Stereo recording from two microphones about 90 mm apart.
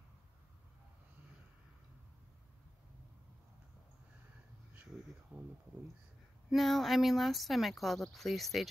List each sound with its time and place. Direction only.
5.3 s speech: 25° right (ahead or behind)
6.5 s speech: centre (ahead or behind)